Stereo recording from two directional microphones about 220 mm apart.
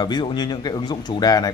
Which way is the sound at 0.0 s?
20° left (ahead or behind).